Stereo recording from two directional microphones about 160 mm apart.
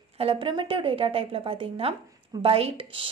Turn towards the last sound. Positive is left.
turn(degrees=-35)  # may be behind; listen again after turning